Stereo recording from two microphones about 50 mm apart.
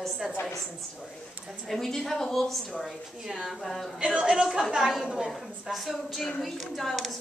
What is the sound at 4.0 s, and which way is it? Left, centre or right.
A woman's voice, right.